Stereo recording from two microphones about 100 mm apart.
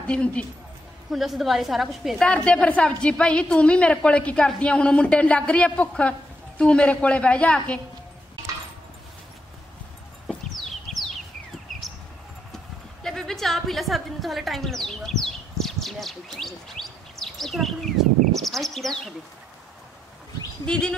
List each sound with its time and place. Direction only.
0.0 s a woman's voice: 10° left (ahead or behind)
1.1 s a woman's voice: centre (ahead or behind)
2.2 s a woman's voice: 10° left (ahead or behind)
10.9 s a sound: 5° left (ahead or behind)
12.5 s a sound: 5° left (ahead or behind)
20.6 s a woman's voice: 10° left (ahead or behind)